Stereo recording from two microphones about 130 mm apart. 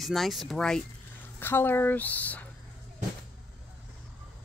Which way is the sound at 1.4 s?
15° left (ahead or behind).